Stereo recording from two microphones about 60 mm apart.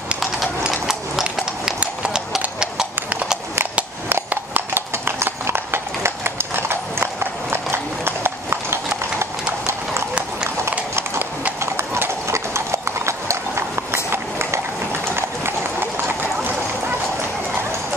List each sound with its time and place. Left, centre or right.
0.7 s clip-clop: centre
1.8 s clip-clop: centre
4.1 s clip-clop: right
11.6 s clip-clop: right
15.1 s run: right